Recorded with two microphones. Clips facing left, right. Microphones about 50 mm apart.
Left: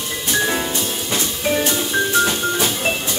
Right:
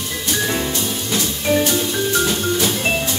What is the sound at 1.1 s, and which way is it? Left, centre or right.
Music, left.